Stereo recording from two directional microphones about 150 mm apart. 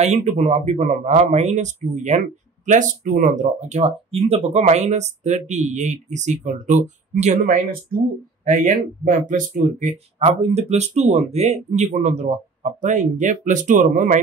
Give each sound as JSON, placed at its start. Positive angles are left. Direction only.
{"t": 0.0, "sound": "speech", "side_deg": -50}
{"t": 10.5, "sound": "speech", "side_deg": -45}